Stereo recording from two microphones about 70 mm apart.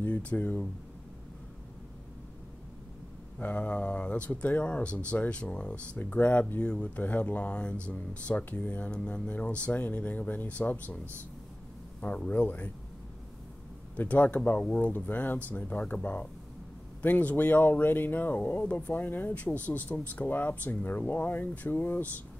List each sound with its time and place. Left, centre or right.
0.0 s speech: centre
3.3 s speech: centre
12.2 s speech: left
13.9 s speech: left
14.6 s speech: centre